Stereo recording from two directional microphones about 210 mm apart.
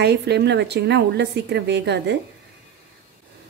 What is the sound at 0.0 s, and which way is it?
A woman's voice, 50° right (ahead or behind).